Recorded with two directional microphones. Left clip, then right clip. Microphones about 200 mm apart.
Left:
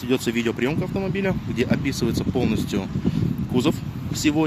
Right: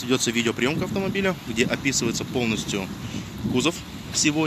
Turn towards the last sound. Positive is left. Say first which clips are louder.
# left 2 dB
turn(degrees=25)  # may be behind; listen again after turning